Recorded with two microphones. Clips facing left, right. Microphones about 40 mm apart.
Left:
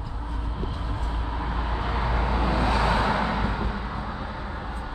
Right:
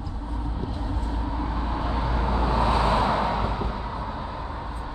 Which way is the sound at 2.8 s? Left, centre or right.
Centre.